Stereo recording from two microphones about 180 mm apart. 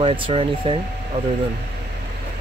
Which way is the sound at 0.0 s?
30° right (ahead or behind).